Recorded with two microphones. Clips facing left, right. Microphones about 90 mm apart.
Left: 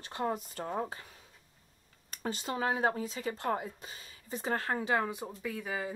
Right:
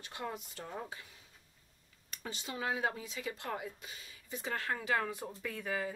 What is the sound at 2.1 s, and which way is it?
Speech, 45° left (ahead or behind).